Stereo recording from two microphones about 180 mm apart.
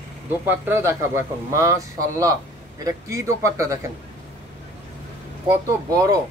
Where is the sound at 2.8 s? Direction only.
15° right (ahead or behind).